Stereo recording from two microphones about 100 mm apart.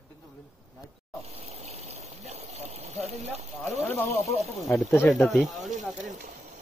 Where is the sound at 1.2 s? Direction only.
90° right.